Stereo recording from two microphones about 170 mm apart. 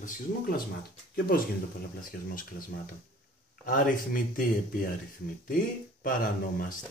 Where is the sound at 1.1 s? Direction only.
60° left (ahead or behind).